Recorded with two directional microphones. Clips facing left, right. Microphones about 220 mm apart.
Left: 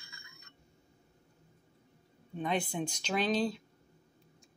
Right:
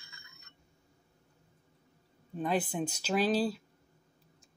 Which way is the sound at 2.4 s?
5° right (ahead or behind).